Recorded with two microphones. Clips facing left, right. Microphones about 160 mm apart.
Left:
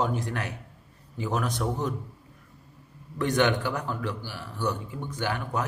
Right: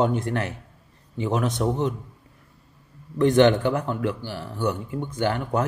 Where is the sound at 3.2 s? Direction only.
25° right (ahead or behind).